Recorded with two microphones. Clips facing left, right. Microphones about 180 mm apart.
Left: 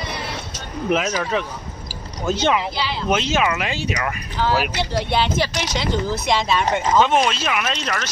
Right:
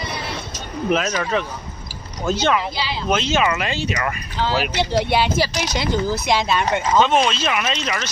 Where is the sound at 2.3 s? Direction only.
15° left (ahead or behind).